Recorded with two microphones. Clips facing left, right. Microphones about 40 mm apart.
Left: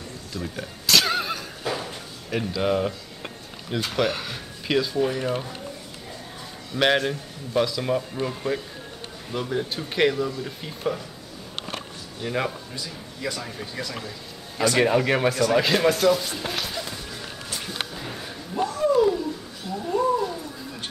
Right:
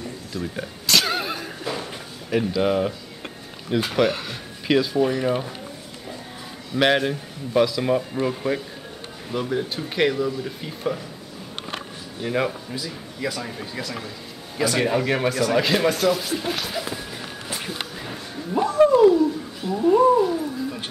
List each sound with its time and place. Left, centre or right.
0.3 s speech: centre
1.6 s a sound: centre
3.7 s speech: centre
6.7 s speech: centre
12.2 s speech: centre
14.8 s speech: centre
16.8 s music: centre
18.6 s a sound: centre
19.8 s cat: centre